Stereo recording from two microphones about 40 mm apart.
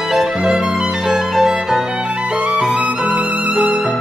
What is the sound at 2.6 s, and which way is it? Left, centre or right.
Music, centre.